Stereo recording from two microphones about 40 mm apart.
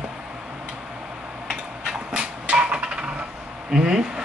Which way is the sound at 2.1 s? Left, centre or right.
Right.